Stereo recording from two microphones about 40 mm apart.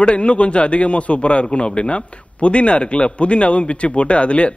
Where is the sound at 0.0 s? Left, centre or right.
Left.